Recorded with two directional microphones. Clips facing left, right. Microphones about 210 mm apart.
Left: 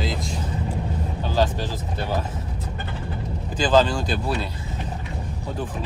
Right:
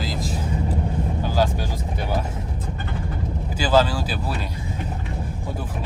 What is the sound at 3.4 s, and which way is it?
Speech, 10° right (ahead or behind).